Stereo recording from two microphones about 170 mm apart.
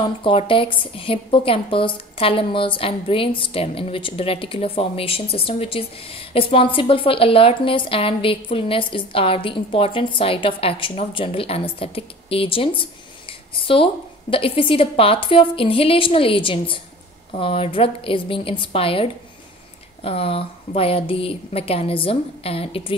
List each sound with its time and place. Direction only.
0.2 s a woman's voice: 30° left (ahead or behind)